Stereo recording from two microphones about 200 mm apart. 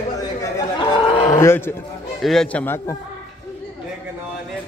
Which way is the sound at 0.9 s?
30° left (ahead or behind).